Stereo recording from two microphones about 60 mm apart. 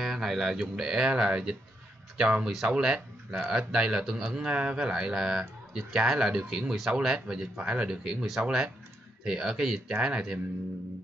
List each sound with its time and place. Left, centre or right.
0.0 s speech: centre
4.5 s speech: centre